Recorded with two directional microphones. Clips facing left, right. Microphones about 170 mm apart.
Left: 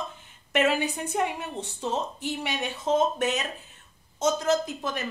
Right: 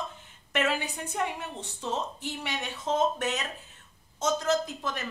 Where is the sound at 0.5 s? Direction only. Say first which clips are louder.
Left 5 dB; 15° left (ahead or behind).